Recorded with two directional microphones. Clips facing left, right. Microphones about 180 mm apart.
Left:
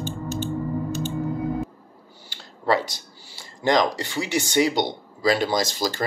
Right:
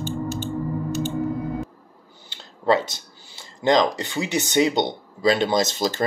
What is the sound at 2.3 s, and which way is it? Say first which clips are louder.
Speech: right 2 dB; 20° right (ahead or behind).